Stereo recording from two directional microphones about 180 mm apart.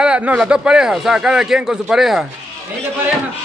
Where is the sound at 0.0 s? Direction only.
5° right (ahead or behind).